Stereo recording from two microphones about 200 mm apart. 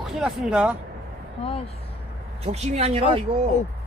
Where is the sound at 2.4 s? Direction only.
30° right (ahead or behind).